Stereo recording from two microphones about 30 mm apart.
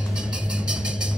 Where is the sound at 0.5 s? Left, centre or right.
Right.